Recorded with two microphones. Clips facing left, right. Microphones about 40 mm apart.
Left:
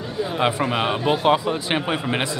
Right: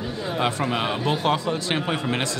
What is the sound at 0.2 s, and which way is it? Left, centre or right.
Speech, centre.